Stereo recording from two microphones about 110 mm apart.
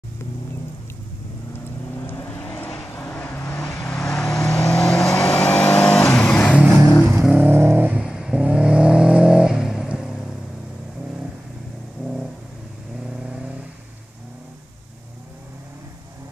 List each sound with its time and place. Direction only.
2.0 s vehicle: 15° left (ahead or behind)
6.6 s vehicle: 5° right (ahead or behind)
7.4 s vehicle: 20° right (ahead or behind)
8.0 s vehicle: 5° right (ahead or behind)
13.1 s vehicle: 5° right (ahead or behind)